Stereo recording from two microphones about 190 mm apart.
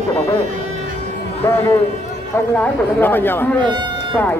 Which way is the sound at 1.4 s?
15° left (ahead or behind).